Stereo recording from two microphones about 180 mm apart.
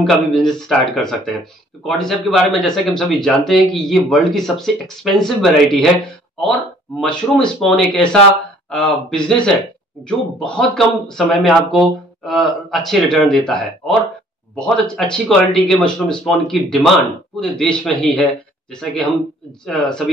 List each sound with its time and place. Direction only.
0.0 s speech: centre (ahead or behind)
7.0 s speech: 5° left (ahead or behind)
19.6 s speech: 5° left (ahead or behind)